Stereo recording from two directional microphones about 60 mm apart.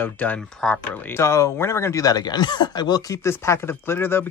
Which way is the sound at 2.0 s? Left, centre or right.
Left.